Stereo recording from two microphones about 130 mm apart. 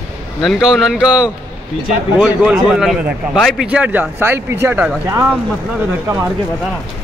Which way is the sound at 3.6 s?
10° right (ahead or behind).